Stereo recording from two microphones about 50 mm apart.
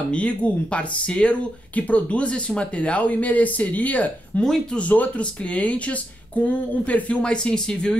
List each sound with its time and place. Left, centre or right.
0.1 s speech: left
7.2 s speech: centre